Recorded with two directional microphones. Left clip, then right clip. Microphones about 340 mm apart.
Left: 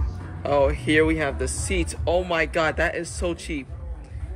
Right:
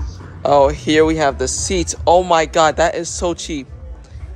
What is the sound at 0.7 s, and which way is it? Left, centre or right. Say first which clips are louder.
Speech: right 6 dB; right.